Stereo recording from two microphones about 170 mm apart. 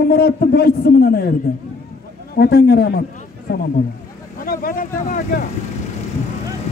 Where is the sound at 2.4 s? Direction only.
75° left (ahead or behind).